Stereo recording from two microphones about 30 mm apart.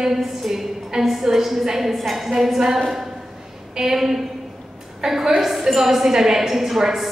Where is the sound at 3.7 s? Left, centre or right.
Centre.